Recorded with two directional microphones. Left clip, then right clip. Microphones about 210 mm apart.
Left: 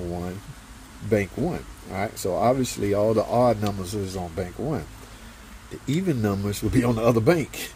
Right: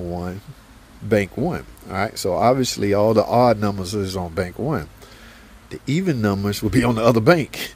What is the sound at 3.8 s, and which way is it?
Speech, 55° right (ahead or behind).